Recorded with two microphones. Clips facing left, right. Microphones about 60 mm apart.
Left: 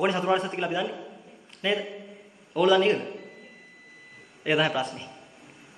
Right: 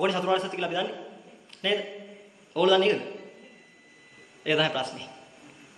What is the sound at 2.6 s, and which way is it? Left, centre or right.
Speech, centre.